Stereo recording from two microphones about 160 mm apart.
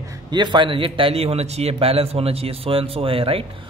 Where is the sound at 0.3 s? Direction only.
30° right (ahead or behind).